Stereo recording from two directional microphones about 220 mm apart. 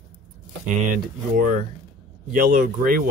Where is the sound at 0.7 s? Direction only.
35° right (ahead or behind).